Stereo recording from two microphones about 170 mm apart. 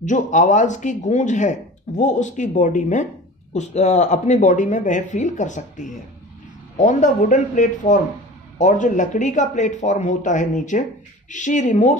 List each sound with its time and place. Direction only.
0.0 s speech: 45° left (ahead or behind)